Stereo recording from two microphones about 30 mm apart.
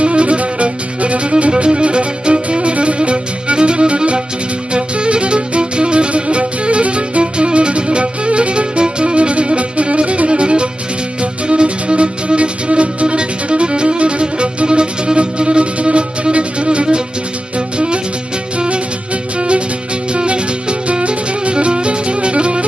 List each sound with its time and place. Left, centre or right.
0.0 s music: right
2.7 s music: right
20.9 s music: right